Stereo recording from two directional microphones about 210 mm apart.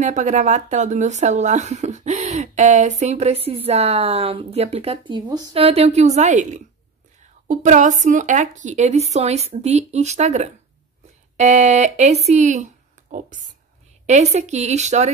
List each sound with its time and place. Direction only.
0.0 s speech: 35° right (ahead or behind)